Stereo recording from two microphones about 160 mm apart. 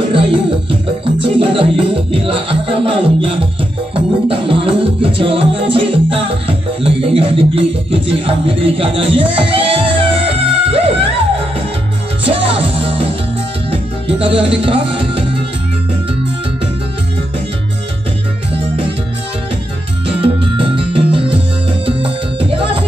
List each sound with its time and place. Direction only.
0.1 s music: 30° right (ahead or behind)
12.3 s music: 35° right (ahead or behind)
14.2 s speech: 35° right (ahead or behind)
20.1 s music: 35° right (ahead or behind)